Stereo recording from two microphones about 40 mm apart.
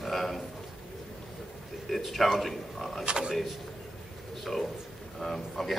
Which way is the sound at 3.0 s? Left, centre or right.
Right.